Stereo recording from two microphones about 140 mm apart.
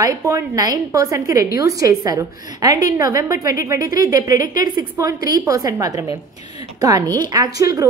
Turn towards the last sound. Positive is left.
turn(degrees=-25)  # may be behind; listen again after turning